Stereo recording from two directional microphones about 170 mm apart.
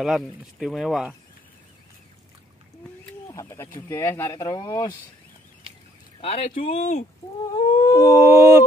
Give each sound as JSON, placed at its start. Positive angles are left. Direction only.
{"t": 0.0, "sound": "speech", "side_deg": 0}
{"t": 3.3, "sound": "speech", "side_deg": 15}
{"t": 6.2, "sound": "speech", "side_deg": 40}
{"t": 7.5, "sound": "a sound", "side_deg": 30}
{"t": 7.9, "sound": "howl", "side_deg": 20}
{"t": 8.2, "sound": "a sound", "side_deg": -15}